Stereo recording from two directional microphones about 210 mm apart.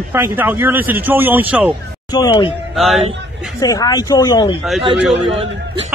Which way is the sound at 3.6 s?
20° left (ahead or behind).